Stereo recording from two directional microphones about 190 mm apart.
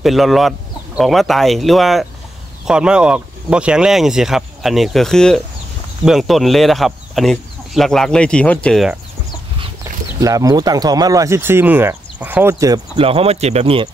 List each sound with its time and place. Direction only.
0.0 s speech: centre (ahead or behind)
10.2 s speech: 20° right (ahead or behind)